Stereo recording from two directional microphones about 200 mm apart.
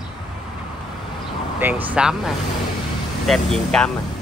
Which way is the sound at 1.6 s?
10° right (ahead or behind).